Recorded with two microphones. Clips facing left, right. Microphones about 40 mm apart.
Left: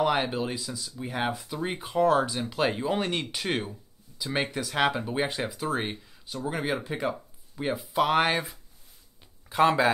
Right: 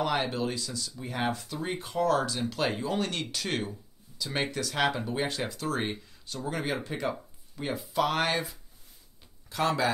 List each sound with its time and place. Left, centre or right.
0.0 s speech: centre